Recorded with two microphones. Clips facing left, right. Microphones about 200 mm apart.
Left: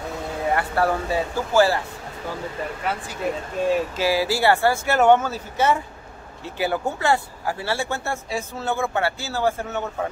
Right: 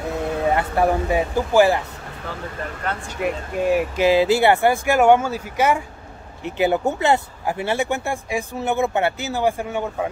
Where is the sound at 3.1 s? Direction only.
15° right (ahead or behind).